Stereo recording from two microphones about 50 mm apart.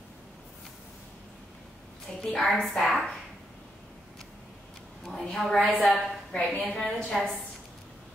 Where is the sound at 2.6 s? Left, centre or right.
Centre.